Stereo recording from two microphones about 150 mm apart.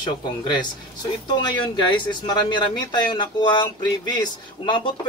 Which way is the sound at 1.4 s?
30° left (ahead or behind).